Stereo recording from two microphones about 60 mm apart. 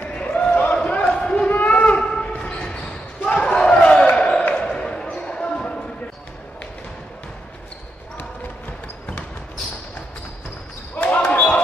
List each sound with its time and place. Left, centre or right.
0.0 s a sound: left
0.7 s basketball bounce: centre
1.5 s shofar: left
2.6 s basketball bounce: left
11.0 s basketball bounce: centre
11.3 s a sound: left